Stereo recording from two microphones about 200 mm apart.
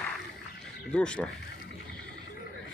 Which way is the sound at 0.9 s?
5° left (ahead or behind).